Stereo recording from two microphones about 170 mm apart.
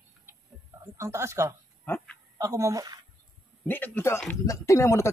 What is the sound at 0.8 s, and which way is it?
Speech, 15° right (ahead or behind).